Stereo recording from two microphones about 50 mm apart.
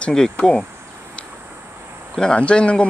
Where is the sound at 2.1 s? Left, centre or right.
Left.